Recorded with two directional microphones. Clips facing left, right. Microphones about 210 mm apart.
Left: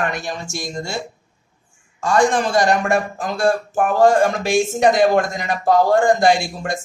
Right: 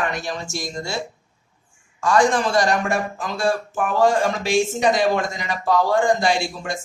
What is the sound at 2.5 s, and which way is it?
Speech, 50° left (ahead or behind).